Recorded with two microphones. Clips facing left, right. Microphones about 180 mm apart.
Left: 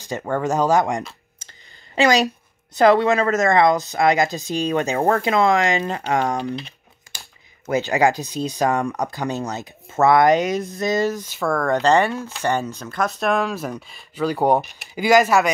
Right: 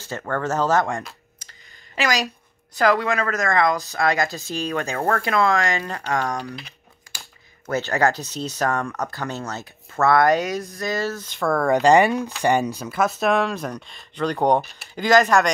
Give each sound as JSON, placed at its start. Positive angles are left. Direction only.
{"t": 0.0, "sound": "speech", "side_deg": 15}
{"t": 2.7, "sound": "a woman's voice", "side_deg": 25}
{"t": 7.6, "sound": "speech", "side_deg": 15}
{"t": 11.5, "sound": "speech", "side_deg": -10}